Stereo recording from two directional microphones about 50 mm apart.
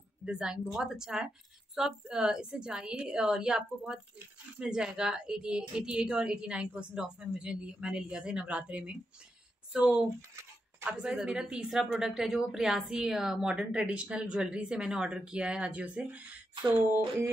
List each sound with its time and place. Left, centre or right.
0.2 s a woman's voice: centre
9.7 s a woman's voice: centre